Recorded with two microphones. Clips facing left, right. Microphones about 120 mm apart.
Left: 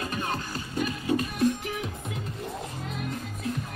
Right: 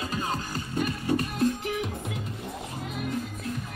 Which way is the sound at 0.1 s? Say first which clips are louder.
Right 1 dB; 30° right (ahead or behind).